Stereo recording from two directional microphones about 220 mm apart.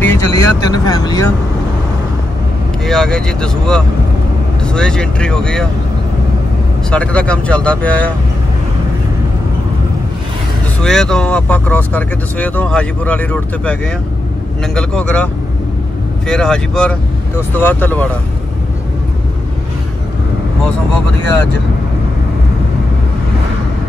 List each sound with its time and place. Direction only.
0.0 s speech: 10° left (ahead or behind)
2.8 s speech: 5° left (ahead or behind)
6.9 s speech: 5° left (ahead or behind)
10.8 s speech: centre (ahead or behind)
14.8 s speech: 5° left (ahead or behind)
16.3 s speech: 5° left (ahead or behind)